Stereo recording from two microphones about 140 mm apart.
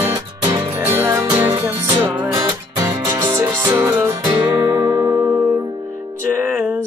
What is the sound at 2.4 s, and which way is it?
Music, 25° right (ahead or behind).